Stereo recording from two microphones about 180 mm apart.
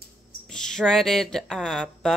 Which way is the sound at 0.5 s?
5° left (ahead or behind).